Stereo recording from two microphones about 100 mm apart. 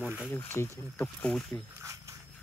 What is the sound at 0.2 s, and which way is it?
Speech, 15° left (ahead or behind).